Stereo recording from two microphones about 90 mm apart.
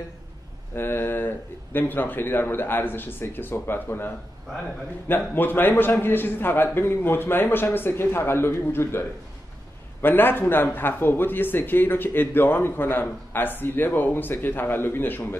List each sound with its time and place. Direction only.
0.7 s speech: 25° left (ahead or behind)
5.3 s speech: 20° left (ahead or behind)
10.0 s speech: 25° left (ahead or behind)